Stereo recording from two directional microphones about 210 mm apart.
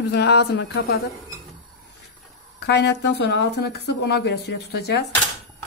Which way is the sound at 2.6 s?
55° left (ahead or behind).